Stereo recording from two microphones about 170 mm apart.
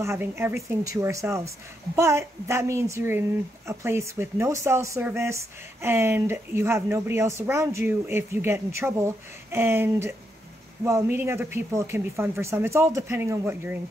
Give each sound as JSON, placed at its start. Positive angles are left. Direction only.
{"t": 0.0, "sound": "speech", "side_deg": -15}